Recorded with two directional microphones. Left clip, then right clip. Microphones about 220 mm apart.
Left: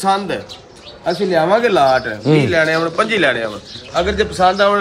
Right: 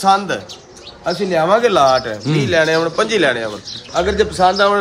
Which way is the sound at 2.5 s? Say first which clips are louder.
Right 1 dB; 50° right (ahead or behind).